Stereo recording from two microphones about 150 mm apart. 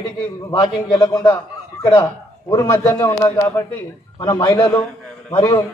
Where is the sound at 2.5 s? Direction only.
20° left (ahead or behind).